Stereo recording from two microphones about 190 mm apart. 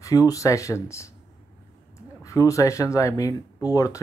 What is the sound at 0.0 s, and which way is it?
Speech, 20° left (ahead or behind).